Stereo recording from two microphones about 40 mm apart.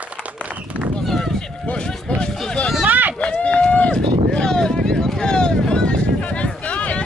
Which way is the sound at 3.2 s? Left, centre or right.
Left.